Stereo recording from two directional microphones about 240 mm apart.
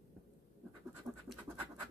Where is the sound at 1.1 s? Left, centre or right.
Right.